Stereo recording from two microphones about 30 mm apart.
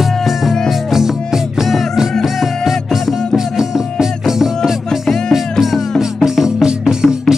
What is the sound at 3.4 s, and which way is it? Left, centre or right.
Music, centre.